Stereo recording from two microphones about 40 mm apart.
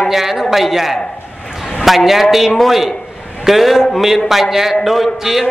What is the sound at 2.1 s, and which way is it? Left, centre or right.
A man's voice, centre.